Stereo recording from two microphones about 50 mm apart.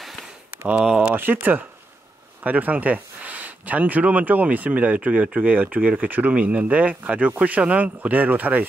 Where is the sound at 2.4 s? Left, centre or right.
Right.